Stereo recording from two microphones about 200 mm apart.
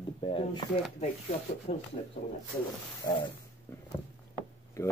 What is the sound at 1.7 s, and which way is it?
Speech, 35° left (ahead or behind).